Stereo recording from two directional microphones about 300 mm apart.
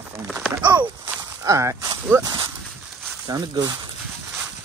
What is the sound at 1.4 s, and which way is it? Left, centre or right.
Speech, centre.